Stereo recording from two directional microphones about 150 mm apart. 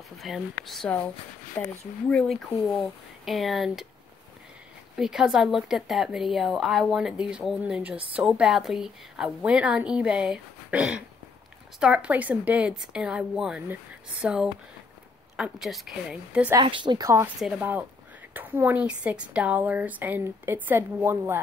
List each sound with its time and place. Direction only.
0.2 s a woman's voice: centre (ahead or behind)
2.0 s a woman's voice: 5° left (ahead or behind)
4.9 s a woman's voice: 5° right (ahead or behind)
16.5 s speech: 30° right (ahead or behind)
17.4 s a woman's voice: 5° right (ahead or behind)